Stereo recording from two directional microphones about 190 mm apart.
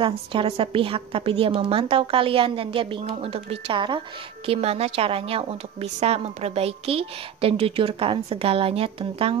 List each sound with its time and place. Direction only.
0.0 s a woman's voice: 25° right (ahead or behind)